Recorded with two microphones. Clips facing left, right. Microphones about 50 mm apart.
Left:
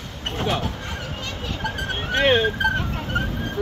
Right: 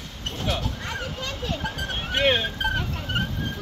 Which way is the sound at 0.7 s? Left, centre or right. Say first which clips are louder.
Even; centre.